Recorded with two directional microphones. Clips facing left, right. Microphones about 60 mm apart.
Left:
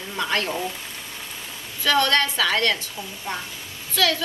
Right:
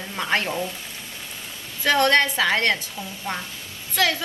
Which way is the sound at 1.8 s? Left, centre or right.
Right.